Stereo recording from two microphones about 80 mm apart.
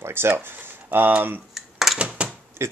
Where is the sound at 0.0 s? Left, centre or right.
Right.